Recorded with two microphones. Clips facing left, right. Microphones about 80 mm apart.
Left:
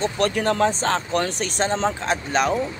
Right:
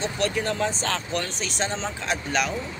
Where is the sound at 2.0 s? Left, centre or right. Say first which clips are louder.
Left 4 dB; left.